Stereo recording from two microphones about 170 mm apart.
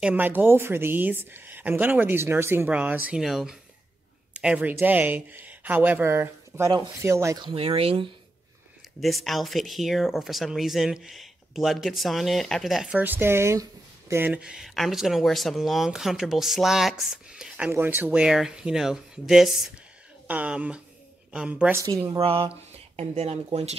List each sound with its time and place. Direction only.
0.0 s a woman's voice: 10° right (ahead or behind); by 8.1 s 35° right (ahead or behind)
9.0 s a woman's voice: centre (ahead or behind); by 22.2 s 20° right (ahead or behind)
22.2 s speech: 30° right (ahead or behind)